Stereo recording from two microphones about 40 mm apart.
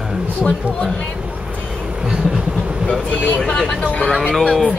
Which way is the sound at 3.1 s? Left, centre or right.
Left.